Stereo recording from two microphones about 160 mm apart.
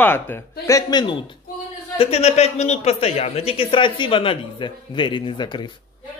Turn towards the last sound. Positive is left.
turn(degrees=30)  # may be behind; listen again after turning